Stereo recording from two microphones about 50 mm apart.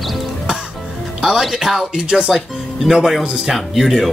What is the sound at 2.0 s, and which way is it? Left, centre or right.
Speech, centre.